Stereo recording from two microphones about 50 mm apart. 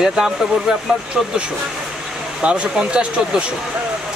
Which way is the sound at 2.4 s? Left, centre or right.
Right.